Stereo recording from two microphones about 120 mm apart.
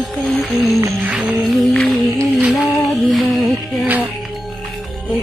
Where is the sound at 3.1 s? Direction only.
Centre (ahead or behind).